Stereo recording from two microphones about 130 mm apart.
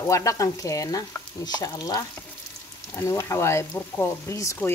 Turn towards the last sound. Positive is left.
turn(degrees=20)  # may be behind; listen again after turning